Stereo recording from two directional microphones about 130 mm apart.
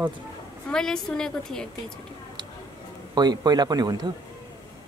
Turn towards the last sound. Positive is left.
turn(degrees=-30)  # may be behind; listen again after turning